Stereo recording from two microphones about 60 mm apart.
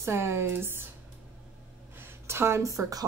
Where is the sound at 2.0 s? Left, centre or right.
Right.